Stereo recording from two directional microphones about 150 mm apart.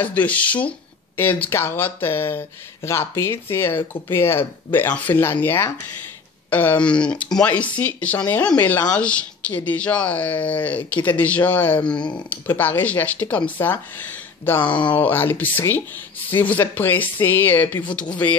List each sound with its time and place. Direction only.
0.0 s speech: 10° left (ahead or behind)
12.0 s speech: 30° left (ahead or behind)
12.3 s speech: 15° left (ahead or behind)
14.6 s speech: 30° left (ahead or behind)
15.0 s speech: 15° left (ahead or behind)